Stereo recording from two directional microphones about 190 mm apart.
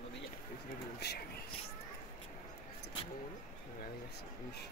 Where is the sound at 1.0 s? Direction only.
60° left (ahead or behind).